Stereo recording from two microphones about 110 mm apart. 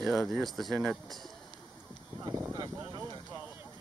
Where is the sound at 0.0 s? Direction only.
Centre (ahead or behind).